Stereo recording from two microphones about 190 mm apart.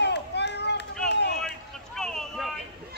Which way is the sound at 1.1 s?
65° left (ahead or behind).